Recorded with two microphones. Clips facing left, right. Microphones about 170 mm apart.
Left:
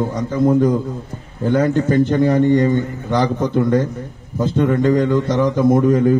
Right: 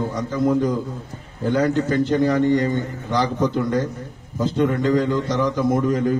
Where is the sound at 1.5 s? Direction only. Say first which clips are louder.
Left 4 dB; 55° left (ahead or behind).